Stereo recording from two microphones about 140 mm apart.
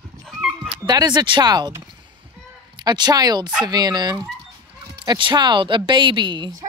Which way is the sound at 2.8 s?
30° right (ahead or behind).